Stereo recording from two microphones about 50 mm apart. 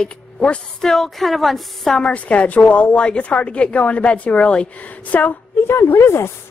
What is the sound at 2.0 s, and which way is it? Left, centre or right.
A woman's voice, left.